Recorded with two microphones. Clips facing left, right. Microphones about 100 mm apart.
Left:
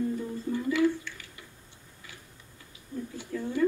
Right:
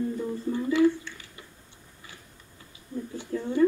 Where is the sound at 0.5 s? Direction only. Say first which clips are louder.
Right 3 dB; 25° right (ahead or behind).